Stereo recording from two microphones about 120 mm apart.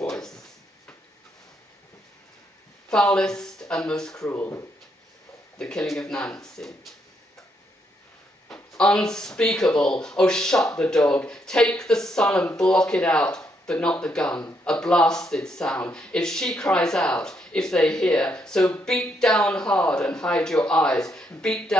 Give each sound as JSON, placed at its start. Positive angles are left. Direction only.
{"t": 0.0, "sound": "a sound", "side_deg": 5}
{"t": 2.9, "sound": "speech", "side_deg": 5}
{"t": 4.3, "sound": "speech", "side_deg": 20}
{"t": 5.6, "sound": "speech", "side_deg": 5}
{"t": 8.5, "sound": "speech", "side_deg": 5}